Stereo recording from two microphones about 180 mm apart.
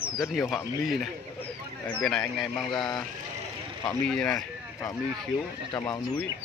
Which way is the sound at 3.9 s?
5° left (ahead or behind).